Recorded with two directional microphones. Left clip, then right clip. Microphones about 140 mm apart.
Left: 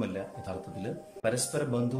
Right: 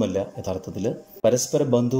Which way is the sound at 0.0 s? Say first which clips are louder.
Right 11 dB; 45° right (ahead or behind).